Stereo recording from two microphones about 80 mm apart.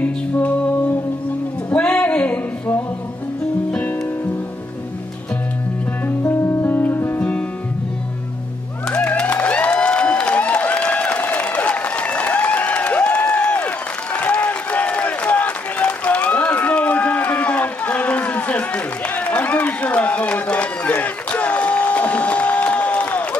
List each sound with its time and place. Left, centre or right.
0.0 s music: centre
6.0 s music: left
7.2 s music: centre
8.9 s a sound: centre
14.1 s applause: centre